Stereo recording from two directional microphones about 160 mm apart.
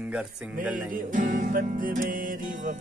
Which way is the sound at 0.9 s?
55° right (ahead or behind).